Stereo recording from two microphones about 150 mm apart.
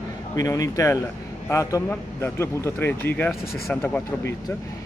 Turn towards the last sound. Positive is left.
turn(degrees=10)  # may be behind; listen again after turning